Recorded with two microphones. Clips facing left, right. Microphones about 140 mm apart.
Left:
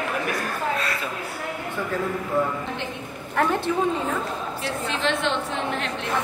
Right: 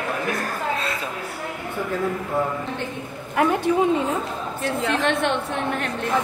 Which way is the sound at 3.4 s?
10° right (ahead or behind).